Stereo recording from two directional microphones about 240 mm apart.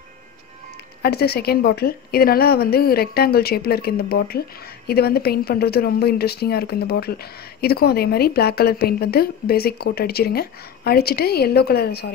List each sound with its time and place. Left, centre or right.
1.0 s a woman's voice: left